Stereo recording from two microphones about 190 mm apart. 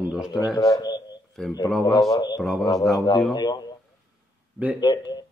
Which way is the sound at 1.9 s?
20° left (ahead or behind).